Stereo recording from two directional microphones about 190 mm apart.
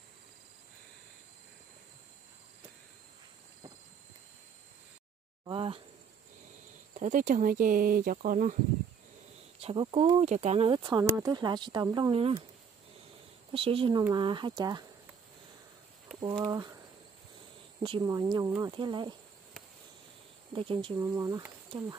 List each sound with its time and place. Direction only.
5.4 s a sound: 25° right (ahead or behind)
7.0 s speech: 45° right (ahead or behind)
9.6 s speech: 30° right (ahead or behind)
13.5 s speech: 30° right (ahead or behind)
16.2 s speech: 25° right (ahead or behind)
20.5 s speech: 30° right (ahead or behind)
21.0 s speech: 15° right (ahead or behind)